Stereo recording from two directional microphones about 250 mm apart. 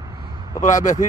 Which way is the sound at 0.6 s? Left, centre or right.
Left.